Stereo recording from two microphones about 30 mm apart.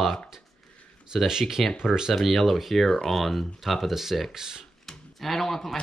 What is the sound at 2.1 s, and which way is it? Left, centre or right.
Speech, centre.